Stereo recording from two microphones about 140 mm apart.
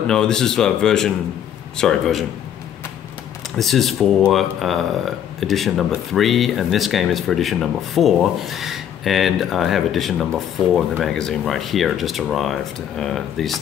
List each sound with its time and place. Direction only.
0.0 s speech: 5° left (ahead or behind)
3.5 s speech: centre (ahead or behind)